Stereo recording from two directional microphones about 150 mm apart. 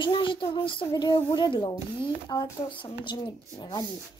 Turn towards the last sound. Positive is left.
turn(degrees=30)  # may be behind; listen again after turning